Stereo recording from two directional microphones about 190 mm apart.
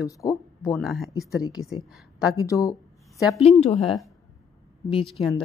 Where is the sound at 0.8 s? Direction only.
Centre (ahead or behind).